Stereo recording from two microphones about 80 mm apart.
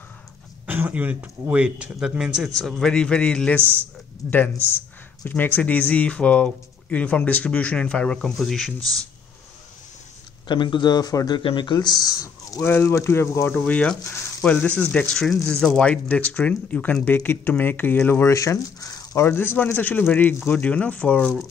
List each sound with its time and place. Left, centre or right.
0.7 s a sound: right
1.5 s speech: centre
2.5 s speech: centre
10.5 s speech: left
12.6 s speech: left
13.7 s speech: centre
18.2 s speech: left
19.2 s speech: left